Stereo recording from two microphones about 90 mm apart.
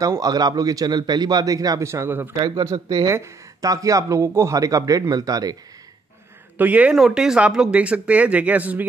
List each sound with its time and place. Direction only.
0.0 s a man's voice: 40° right (ahead or behind); by 2.3 s 25° right (ahead or behind)
2.6 s a man's voice: 50° right (ahead or behind)
3.1 s speech: 35° right (ahead or behind)
6.6 s speech: 15° right (ahead or behind)